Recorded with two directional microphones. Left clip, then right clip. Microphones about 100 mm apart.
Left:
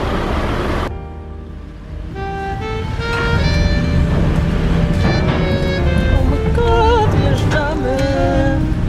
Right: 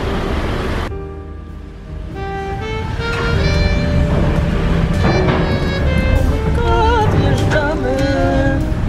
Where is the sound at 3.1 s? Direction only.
15° right (ahead or behind).